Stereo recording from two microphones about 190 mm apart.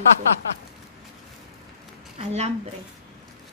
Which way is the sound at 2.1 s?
35° right (ahead or behind).